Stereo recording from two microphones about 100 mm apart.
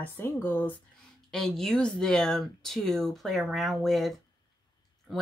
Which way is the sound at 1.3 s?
5° left (ahead or behind).